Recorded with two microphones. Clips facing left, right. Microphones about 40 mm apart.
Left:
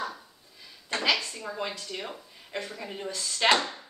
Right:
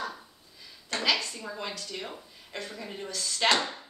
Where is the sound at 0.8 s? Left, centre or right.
Centre.